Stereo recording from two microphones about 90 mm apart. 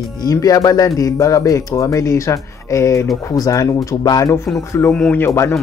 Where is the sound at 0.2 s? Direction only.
45° left (ahead or behind).